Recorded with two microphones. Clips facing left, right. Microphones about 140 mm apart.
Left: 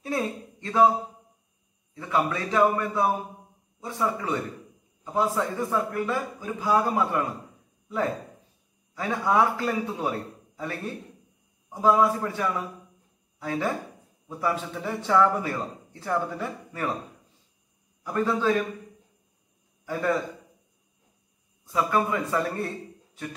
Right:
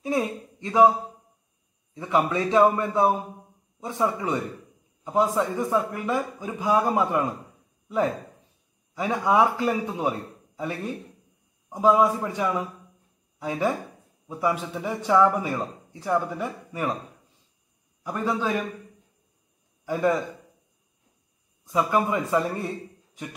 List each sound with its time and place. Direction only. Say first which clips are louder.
0.0 s a man's voice: right 3 dB; 15° right (ahead or behind)
2.0 s a man's voice: right 3 dB; 20° right (ahead or behind)
8.9 s a man's voice: right 2 dB; 15° right (ahead or behind)
18.0 s a man's voice: left 2 dB; 15° right (ahead or behind)
19.9 s a man's voice: right 3 dB; 15° right (ahead or behind)
21.7 s a man's voice: right 2 dB; 20° right (ahead or behind)